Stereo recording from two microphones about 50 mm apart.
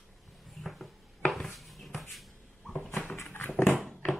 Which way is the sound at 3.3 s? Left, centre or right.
Left.